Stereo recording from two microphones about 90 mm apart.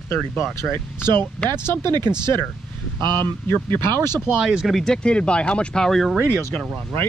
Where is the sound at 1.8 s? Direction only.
50° right (ahead or behind).